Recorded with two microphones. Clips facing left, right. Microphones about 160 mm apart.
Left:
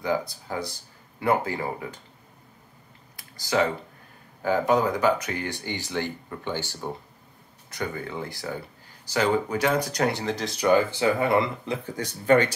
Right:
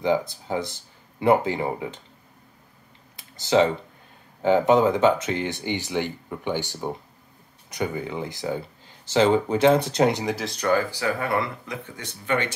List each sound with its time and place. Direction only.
0.3 s speech: 20° right (ahead or behind)
3.2 s computer keyboard: 25° right (ahead or behind)
4.4 s speech: 20° right (ahead or behind)
10.3 s speech: centre (ahead or behind)
10.6 s speech: 20° left (ahead or behind); by 12.5 s 40° left (ahead or behind)